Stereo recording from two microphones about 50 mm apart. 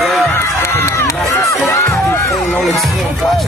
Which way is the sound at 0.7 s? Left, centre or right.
Left.